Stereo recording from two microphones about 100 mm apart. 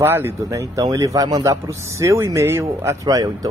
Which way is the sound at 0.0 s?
25° right (ahead or behind).